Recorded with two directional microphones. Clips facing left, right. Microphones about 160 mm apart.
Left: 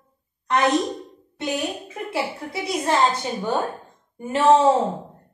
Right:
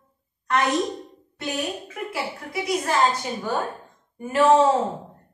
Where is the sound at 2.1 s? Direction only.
25° left (ahead or behind).